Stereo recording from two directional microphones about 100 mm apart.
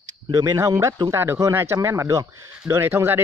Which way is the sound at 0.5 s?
30° right (ahead or behind).